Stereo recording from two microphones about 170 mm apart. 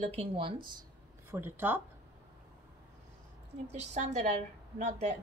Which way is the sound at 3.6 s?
45° right (ahead or behind).